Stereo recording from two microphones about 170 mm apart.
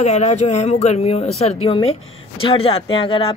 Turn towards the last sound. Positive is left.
turn(degrees=30)  # may be behind; listen again after turning